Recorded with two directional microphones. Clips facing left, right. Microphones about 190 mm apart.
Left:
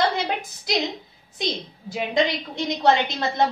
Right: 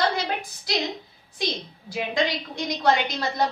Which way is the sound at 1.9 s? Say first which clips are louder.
Left 3 dB; 20° left (ahead or behind).